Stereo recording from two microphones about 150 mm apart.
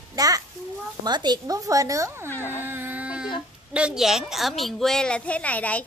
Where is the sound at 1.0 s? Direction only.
30° right (ahead or behind).